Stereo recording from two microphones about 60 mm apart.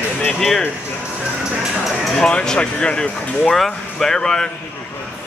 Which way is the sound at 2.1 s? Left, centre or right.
Centre.